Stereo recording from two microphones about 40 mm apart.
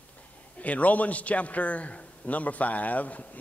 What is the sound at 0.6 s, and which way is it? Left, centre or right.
A man's voice, left.